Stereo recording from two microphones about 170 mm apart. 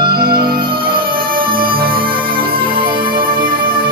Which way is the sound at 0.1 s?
65° right (ahead or behind).